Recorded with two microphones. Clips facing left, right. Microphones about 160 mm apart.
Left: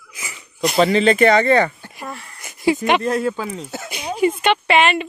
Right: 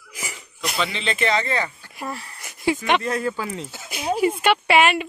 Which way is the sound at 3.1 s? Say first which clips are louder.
Left 4 dB; 30° left (ahead or behind).